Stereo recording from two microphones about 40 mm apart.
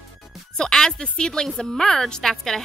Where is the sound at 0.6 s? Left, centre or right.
Centre.